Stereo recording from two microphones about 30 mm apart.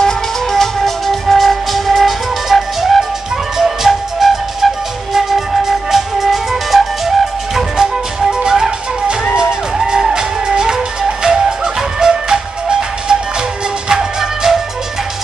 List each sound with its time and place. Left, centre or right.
0.0 s music: centre
7.7 s music: right